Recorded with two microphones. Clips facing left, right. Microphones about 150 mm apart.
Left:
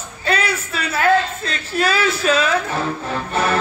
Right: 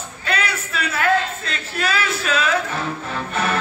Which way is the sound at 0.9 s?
30° left (ahead or behind).